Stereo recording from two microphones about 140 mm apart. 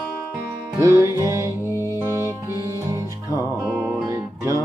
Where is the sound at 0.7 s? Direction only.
20° right (ahead or behind).